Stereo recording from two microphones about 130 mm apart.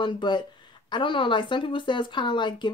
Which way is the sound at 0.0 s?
35° left (ahead or behind).